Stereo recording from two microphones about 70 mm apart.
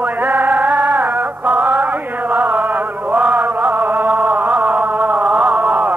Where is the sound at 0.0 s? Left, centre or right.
Right.